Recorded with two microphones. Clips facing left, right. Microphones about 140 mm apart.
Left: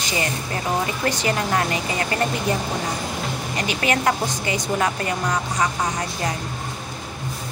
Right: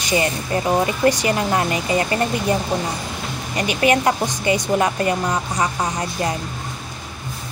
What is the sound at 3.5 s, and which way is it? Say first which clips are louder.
Speech: right 6 dB; 20° right (ahead or behind).